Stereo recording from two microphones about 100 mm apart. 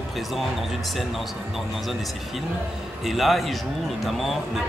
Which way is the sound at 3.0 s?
Centre (ahead or behind).